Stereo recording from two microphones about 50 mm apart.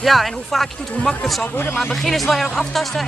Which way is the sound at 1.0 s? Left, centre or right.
Left.